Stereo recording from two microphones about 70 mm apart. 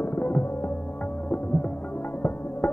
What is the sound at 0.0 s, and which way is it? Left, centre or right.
Music, left.